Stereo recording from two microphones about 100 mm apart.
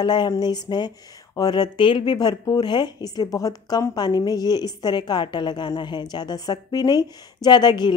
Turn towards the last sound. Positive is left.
turn(degrees=45)  # may be behind; listen again after turning